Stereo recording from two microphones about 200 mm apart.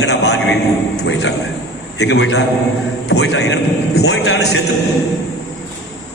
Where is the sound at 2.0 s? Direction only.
60° left (ahead or behind).